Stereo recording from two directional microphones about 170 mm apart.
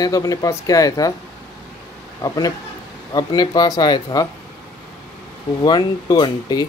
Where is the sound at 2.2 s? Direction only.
20° left (ahead or behind).